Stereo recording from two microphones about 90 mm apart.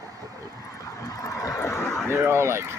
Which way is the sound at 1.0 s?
40° left (ahead or behind).